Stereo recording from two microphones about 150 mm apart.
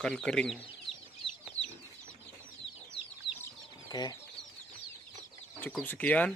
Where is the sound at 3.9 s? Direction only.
25° left (ahead or behind).